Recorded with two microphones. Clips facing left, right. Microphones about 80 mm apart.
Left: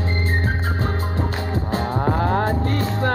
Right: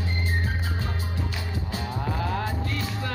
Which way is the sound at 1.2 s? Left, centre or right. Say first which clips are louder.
Left 8 dB; left.